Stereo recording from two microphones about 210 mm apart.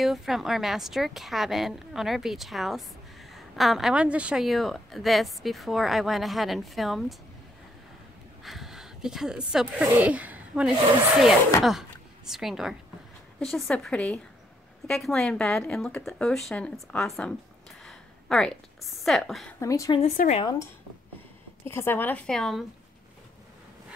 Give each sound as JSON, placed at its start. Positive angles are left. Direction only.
{"t": 0.0, "sound": "a woman's voice", "side_deg": 0}
{"t": 8.5, "sound": "a woman's voice", "side_deg": 0}
{"t": 12.3, "sound": "a woman's voice", "side_deg": 0}
{"t": 19.6, "sound": "speech", "side_deg": 15}
{"t": 20.0, "sound": "a woman's voice", "side_deg": 30}
{"t": 21.6, "sound": "speech", "side_deg": 10}